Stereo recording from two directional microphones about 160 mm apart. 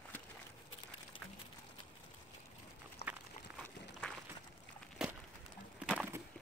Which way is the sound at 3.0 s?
40° left (ahead or behind).